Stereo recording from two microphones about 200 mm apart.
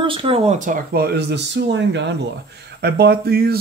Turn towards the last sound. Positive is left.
turn(degrees=-50)  # may be behind; listen again after turning